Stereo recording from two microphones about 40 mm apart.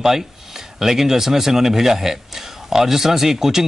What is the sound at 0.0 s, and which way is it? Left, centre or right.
Speech, centre.